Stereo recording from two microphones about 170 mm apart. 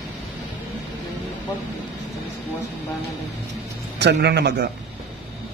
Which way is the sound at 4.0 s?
90° right.